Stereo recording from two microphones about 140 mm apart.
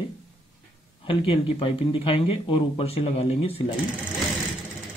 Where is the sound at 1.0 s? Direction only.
40° left (ahead or behind).